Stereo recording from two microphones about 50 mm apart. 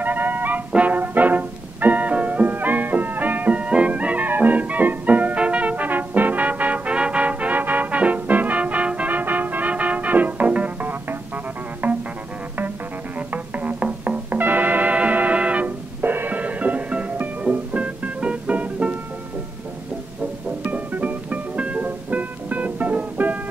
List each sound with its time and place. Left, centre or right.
0.0 s music: right
13.3 s music: right
16.0 s music: right
20.6 s music: right